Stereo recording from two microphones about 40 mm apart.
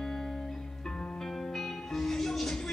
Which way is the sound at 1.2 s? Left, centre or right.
Centre.